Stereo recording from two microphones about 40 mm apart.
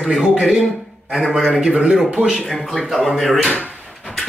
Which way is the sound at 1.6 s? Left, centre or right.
Right.